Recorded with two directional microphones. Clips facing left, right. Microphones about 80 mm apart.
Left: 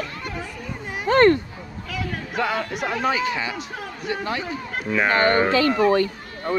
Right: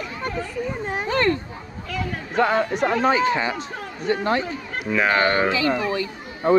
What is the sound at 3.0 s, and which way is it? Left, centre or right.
Speech, right.